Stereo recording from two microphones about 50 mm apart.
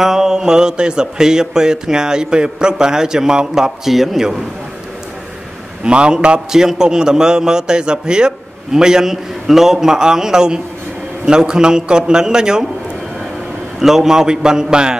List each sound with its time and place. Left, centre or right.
0.0 s speech: centre
5.9 s speech: centre
13.7 s speech: centre